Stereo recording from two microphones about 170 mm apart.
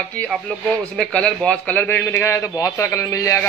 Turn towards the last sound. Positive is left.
turn(degrees=15)  # may be behind; listen again after turning